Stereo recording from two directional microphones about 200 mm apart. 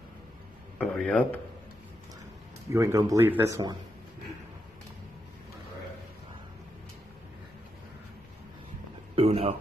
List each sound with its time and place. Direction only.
0.7 s speech: 5° left (ahead or behind)
2.7 s speech: 15° right (ahead or behind)
9.1 s a sound: 30° right (ahead or behind)